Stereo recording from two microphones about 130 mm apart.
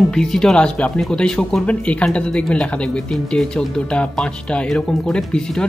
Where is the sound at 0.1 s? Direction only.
5° left (ahead or behind).